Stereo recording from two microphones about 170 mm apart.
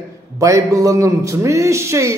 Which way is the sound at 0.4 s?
20° right (ahead or behind).